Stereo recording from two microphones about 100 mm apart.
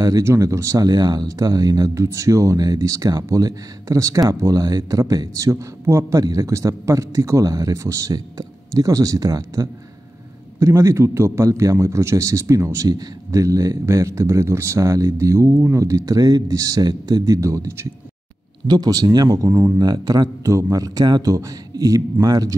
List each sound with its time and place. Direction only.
0.0 s speech: 30° right (ahead or behind)
19.8 s speech: 45° right (ahead or behind)